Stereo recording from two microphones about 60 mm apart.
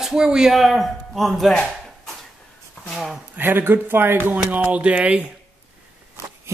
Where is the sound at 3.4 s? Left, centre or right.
Right.